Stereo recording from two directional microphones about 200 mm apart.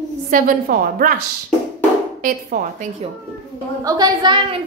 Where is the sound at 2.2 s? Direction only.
45° right (ahead or behind).